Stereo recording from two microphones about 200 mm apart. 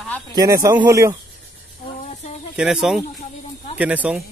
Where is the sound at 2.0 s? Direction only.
35° left (ahead or behind).